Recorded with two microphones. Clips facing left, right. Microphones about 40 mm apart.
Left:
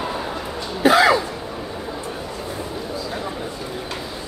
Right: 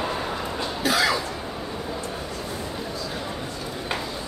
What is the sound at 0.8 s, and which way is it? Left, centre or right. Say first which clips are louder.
Cough: left 9 dB; left.